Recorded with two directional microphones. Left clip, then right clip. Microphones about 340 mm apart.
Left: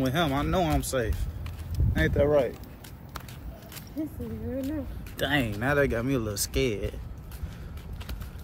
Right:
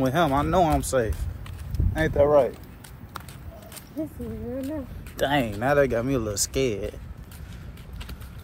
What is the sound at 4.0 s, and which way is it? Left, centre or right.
Speech, centre.